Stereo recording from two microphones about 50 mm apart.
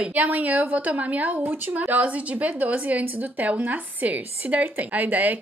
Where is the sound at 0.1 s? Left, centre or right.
Right.